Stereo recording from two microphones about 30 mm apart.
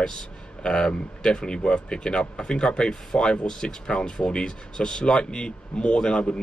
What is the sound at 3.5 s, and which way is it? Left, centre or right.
Speech, left.